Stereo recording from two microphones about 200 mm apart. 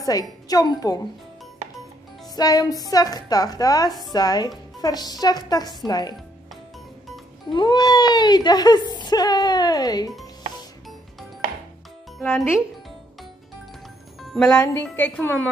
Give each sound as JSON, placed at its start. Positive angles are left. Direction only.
{"t": 0.0, "sound": "speech", "side_deg": 20}
{"t": 2.3, "sound": "speech", "side_deg": 20}
{"t": 7.5, "sound": "speech", "side_deg": 20}
{"t": 12.2, "sound": "speech", "side_deg": 0}
{"t": 14.2, "sound": "music", "side_deg": 0}